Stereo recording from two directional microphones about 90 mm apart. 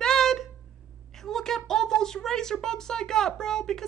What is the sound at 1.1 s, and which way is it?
A woman's voice, 5° left (ahead or behind).